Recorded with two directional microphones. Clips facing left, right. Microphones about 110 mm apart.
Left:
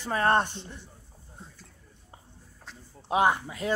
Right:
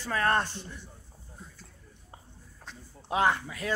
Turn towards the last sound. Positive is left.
turn(degrees=20)  # may be behind; listen again after turning